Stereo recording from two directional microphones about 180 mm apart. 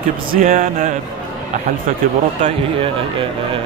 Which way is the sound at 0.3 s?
50° right (ahead or behind).